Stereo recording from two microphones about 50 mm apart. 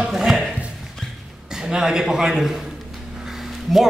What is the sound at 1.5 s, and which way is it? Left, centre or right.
A man's voice, centre.